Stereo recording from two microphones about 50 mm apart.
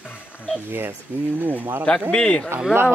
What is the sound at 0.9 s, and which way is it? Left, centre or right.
Speech, right.